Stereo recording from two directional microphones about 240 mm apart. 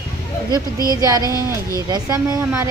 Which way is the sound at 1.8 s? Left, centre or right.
Centre.